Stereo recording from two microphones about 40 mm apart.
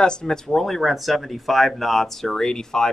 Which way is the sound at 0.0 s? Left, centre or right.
Centre.